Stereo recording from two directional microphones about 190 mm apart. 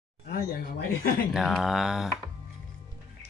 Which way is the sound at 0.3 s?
50° left (ahead or behind).